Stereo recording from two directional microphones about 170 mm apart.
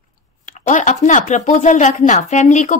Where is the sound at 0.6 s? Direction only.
45° left (ahead or behind).